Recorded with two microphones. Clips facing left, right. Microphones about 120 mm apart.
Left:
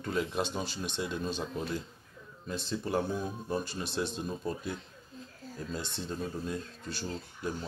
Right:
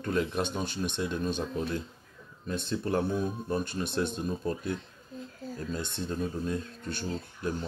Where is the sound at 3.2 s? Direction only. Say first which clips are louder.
Right 3 dB; centre (ahead or behind).